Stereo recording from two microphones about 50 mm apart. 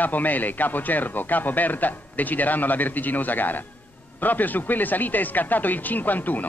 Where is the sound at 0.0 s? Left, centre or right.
Left.